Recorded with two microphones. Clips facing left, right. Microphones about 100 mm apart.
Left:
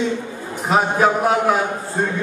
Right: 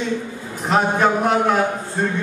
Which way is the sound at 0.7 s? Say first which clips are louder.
Left 1 dB; 5° left (ahead or behind).